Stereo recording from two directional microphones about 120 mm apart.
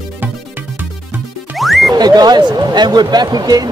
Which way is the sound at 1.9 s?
35° right (ahead or behind).